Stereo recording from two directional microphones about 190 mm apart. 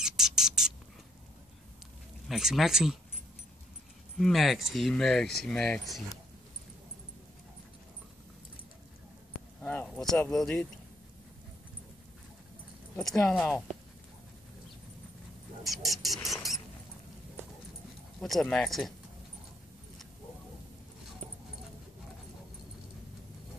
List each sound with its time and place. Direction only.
0.0 s bird: centre (ahead or behind)
2.2 s speech: centre (ahead or behind)
4.2 s speech: centre (ahead or behind)
9.6 s speech: 10° left (ahead or behind)
13.2 s speech: 5° left (ahead or behind)
15.6 s a sound: centre (ahead or behind)
18.2 s speech: centre (ahead or behind)